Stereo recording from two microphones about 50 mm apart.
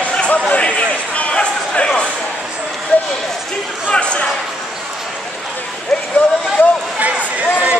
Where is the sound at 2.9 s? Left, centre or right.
Left.